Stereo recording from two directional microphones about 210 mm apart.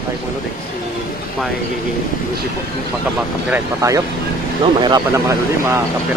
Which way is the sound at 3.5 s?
15° right (ahead or behind).